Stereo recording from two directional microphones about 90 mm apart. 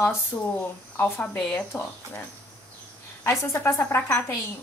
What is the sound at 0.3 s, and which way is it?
A woman's voice, 25° left (ahead or behind).